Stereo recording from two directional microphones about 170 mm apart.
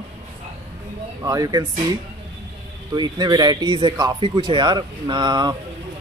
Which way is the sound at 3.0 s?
25° right (ahead or behind).